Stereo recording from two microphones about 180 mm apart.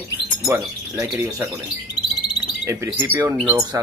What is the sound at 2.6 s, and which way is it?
Wind chime, 15° right (ahead or behind).